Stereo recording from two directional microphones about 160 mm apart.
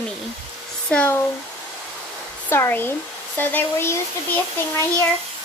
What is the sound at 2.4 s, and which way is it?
Speech, 15° left (ahead or behind).